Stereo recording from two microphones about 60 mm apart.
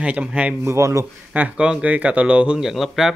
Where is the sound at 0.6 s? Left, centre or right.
Right.